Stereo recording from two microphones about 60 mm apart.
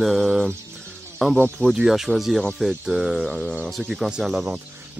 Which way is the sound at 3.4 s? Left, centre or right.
Centre.